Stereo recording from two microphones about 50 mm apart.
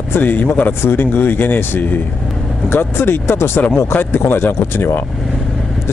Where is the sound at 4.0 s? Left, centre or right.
Left.